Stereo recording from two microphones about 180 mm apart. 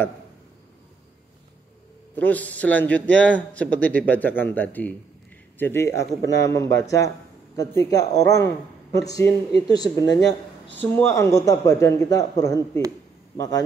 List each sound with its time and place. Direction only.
2.1 s a man's voice: 10° left (ahead or behind)